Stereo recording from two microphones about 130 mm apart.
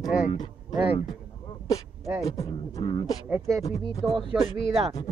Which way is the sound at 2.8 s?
40° left (ahead or behind).